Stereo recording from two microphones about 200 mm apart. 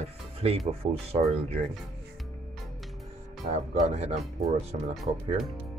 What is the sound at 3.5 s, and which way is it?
Speech, 35° right (ahead or behind).